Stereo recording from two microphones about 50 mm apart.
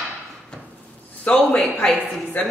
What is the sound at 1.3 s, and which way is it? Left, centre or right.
Speech, left.